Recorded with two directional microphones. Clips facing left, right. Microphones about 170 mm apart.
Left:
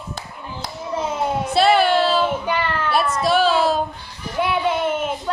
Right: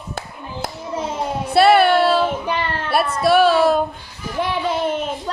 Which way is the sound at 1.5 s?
60° right (ahead or behind).